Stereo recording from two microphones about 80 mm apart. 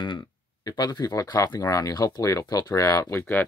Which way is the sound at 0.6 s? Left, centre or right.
Left.